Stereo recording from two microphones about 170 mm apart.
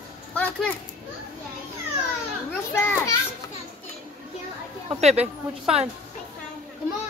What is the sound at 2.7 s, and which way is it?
Speech, 15° left (ahead or behind).